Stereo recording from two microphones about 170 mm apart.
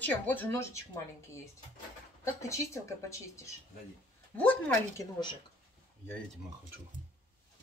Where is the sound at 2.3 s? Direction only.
15° left (ahead or behind).